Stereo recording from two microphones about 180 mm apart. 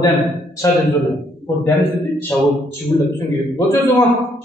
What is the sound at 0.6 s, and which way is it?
Speech, 20° left (ahead or behind).